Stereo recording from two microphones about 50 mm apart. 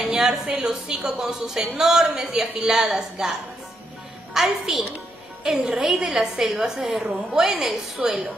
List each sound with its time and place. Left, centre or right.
0.2 s a woman's voice: centre